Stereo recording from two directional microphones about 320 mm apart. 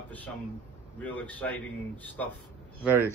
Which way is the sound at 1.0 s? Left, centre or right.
Centre.